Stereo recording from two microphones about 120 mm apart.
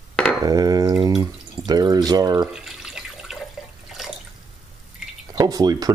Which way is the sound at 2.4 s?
5° right (ahead or behind).